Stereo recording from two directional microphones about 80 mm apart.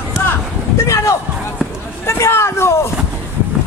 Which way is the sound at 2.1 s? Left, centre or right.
Left.